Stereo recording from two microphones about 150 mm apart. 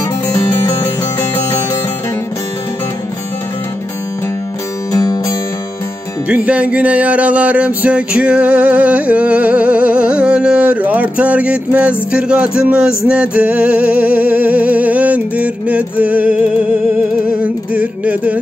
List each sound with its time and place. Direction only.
4.9 s music: 25° left (ahead or behind)
6.2 s music: 10° right (ahead or behind)